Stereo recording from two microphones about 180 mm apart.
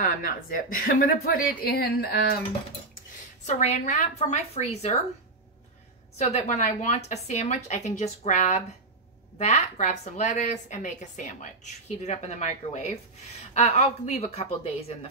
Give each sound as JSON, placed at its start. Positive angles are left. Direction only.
{"t": 0.0, "sound": "a woman's voice", "side_deg": 50}
{"t": 3.4, "sound": "a woman's voice", "side_deg": 40}
{"t": 6.1, "sound": "a woman's voice", "side_deg": 40}